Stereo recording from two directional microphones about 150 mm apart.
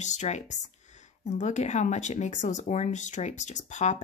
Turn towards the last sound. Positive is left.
turn(degrees=55)  # may be behind; listen again after turning